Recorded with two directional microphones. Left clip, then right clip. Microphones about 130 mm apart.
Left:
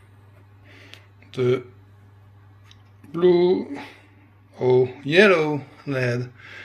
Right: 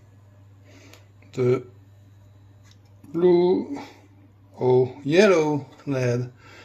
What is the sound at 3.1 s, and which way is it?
Speech, 20° right (ahead or behind).